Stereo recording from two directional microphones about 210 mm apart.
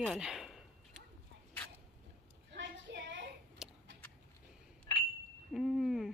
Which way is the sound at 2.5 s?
60° right (ahead or behind).